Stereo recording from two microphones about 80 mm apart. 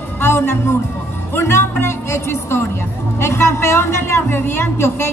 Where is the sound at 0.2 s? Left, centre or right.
Left.